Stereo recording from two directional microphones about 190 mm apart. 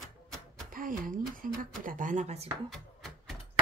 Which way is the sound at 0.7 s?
45° right (ahead or behind).